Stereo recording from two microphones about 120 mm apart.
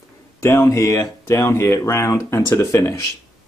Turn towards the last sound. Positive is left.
turn(degrees=25)  # may be behind; listen again after turning